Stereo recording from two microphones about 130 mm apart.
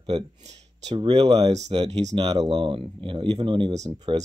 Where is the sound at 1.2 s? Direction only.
55° right (ahead or behind).